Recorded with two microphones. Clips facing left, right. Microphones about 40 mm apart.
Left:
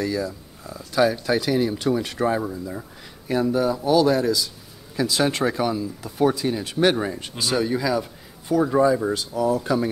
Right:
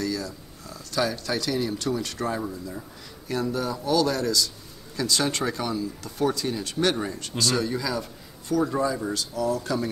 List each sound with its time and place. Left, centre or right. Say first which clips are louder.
0.0 s speech: left 4 dB; centre